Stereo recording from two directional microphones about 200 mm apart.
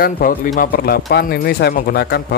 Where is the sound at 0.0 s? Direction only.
50° left (ahead or behind).